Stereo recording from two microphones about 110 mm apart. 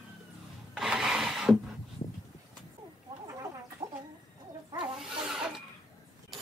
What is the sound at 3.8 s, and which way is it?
Chicken, 35° right (ahead or behind).